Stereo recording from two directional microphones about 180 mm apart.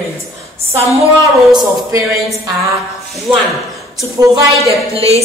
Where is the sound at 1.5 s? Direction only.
25° right (ahead or behind).